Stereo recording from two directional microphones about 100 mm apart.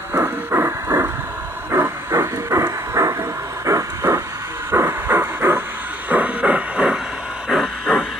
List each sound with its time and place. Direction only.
0.1 s a sound: 25° right (ahead or behind)
1.7 s train: 25° right (ahead or behind)
3.6 s vehicle: 30° right (ahead or behind)
4.6 s train: 25° right (ahead or behind)
6.0 s hiss: 15° right (ahead or behind)